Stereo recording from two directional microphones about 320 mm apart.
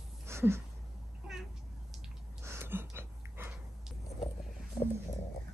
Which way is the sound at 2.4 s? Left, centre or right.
Centre.